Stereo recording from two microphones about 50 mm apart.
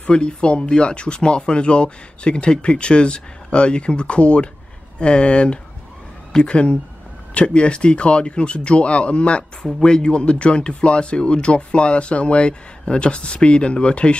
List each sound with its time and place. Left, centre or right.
0.0 s speech: centre